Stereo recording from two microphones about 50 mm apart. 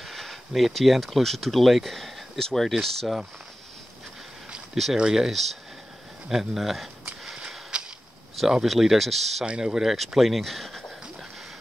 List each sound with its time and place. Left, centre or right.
0.0 s a sound: centre
0.6 s speech: centre
4.9 s speech: centre
5.3 s speech: centre
7.2 s a sound: centre
8.4 s speech: centre
9.6 s speech: centre